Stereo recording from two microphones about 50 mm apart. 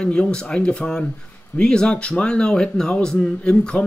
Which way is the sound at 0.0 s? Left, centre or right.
Centre.